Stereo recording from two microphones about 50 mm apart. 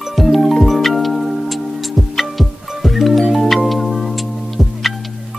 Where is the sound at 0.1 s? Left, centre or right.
Centre.